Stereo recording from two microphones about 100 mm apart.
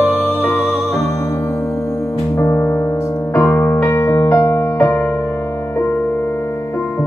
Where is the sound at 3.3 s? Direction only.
25° left (ahead or behind).